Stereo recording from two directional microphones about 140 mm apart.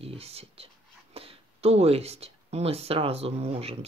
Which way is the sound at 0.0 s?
45° right (ahead or behind).